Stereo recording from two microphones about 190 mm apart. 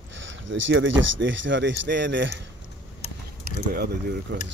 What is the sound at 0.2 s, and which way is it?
Speech, 80° right.